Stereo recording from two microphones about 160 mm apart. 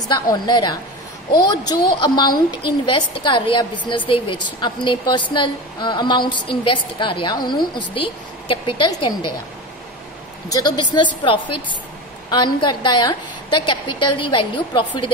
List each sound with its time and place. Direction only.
0.1 s speech: 25° left (ahead or behind)
10.5 s speech: 25° left (ahead or behind)
12.3 s speech: 30° left (ahead or behind)